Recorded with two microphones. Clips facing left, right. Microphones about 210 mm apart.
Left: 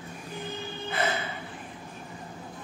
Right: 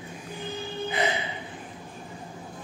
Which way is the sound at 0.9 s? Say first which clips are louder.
Right 1 dB; 15° right (ahead or behind).